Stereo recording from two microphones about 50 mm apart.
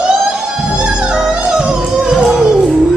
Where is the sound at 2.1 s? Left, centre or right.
Centre.